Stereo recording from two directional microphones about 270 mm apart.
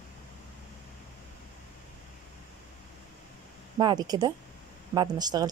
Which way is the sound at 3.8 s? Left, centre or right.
Centre.